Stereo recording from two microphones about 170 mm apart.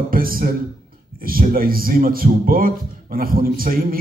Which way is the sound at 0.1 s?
60° right (ahead or behind).